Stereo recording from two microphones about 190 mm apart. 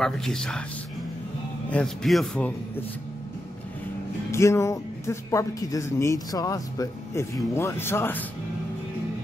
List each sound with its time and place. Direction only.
0.0 s speech: centre (ahead or behind)
1.7 s speech: centre (ahead or behind)
4.3 s speech: 15° left (ahead or behind)